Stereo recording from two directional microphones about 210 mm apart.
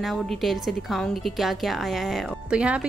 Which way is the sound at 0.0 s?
Centre (ahead or behind).